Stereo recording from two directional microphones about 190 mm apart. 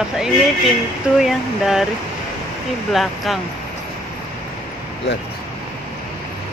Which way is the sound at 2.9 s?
Centre (ahead or behind).